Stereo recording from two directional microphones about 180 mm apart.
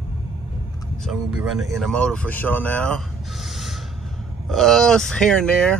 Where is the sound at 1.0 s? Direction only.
5° right (ahead or behind).